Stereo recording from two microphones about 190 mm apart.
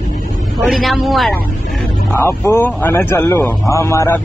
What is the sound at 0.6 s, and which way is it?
Speech, centre (ahead or behind).